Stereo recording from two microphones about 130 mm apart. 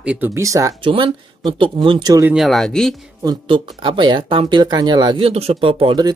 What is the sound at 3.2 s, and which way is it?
Speech, 35° right (ahead or behind).